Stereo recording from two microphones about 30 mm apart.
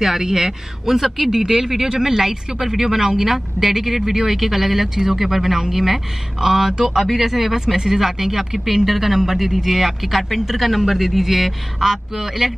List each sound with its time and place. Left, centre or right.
0.0 s speech: centre